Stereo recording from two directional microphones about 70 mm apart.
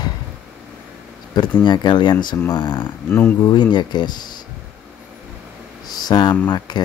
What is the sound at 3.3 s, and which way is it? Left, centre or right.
Speech, left.